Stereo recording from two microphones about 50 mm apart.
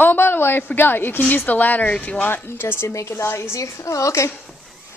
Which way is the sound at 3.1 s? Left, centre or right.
Left.